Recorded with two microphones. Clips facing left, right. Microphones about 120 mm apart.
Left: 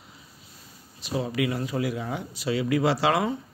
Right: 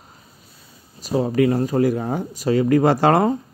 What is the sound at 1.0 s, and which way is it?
A man's voice, 40° right (ahead or behind).